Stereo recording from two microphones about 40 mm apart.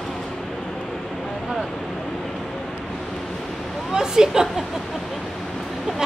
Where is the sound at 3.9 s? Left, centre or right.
Centre.